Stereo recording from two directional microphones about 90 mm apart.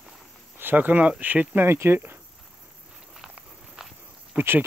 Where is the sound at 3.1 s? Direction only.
5° right (ahead or behind).